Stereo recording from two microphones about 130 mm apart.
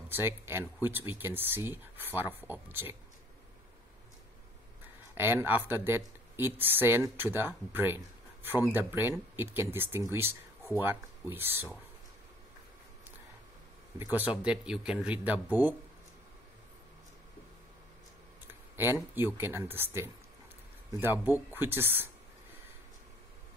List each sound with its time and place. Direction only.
0.1 s speech: 20° right (ahead or behind)
5.1 s speech: 15° right (ahead or behind)
10.1 s a sound: 20° right (ahead or behind)
10.8 s speech: 15° right (ahead or behind)
14.1 s speech: 10° right (ahead or behind)
18.8 s speech: 15° right (ahead or behind)